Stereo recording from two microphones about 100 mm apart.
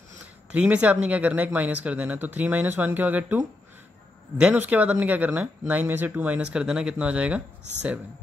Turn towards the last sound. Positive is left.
turn(degrees=-15)  # may be behind; listen again after turning